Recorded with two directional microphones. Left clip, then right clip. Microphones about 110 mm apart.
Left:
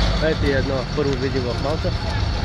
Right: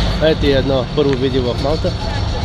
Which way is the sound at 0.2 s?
35° right (ahead or behind).